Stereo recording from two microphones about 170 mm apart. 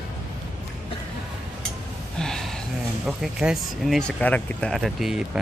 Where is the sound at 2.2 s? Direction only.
5° left (ahead or behind).